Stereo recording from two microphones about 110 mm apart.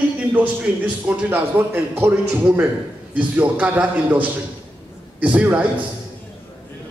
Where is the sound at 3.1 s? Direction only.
15° right (ahead or behind).